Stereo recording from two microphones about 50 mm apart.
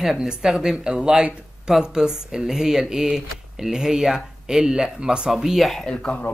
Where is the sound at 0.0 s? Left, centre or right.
Centre.